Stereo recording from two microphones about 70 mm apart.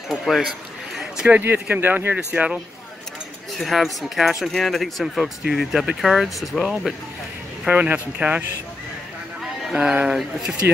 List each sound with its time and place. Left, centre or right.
0.1 s speech: centre
0.9 s a sound: centre
1.3 s speech: right
2.1 s speech: centre
3.5 s speech: centre
7.7 s speech: centre
9.8 s speech: centre